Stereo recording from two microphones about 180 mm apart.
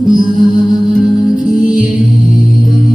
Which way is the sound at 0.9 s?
45° left (ahead or behind).